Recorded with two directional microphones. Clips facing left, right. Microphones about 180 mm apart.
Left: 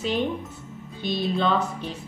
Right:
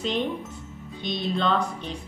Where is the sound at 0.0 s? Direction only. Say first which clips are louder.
Left 1 dB; 5° left (ahead or behind).